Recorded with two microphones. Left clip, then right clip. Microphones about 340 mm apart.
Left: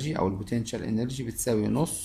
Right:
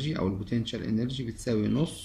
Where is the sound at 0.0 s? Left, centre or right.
Centre.